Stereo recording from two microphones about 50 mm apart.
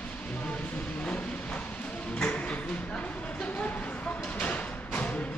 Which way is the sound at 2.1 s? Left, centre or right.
Left.